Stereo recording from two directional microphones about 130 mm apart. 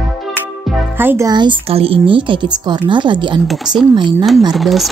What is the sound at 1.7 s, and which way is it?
A woman's voice, 45° right (ahead or behind).